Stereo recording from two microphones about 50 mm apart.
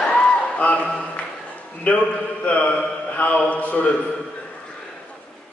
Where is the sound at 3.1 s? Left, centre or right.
Left.